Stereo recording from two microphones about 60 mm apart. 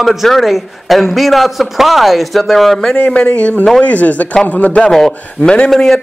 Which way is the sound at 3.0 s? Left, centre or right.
Left.